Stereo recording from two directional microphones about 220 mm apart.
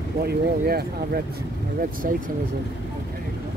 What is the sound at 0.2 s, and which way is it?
Speech, 45° right (ahead or behind).